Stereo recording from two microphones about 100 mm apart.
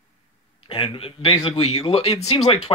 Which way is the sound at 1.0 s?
70° left (ahead or behind).